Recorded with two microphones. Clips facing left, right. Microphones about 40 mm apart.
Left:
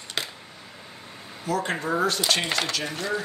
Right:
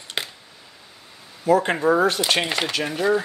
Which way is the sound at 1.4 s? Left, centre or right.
Right.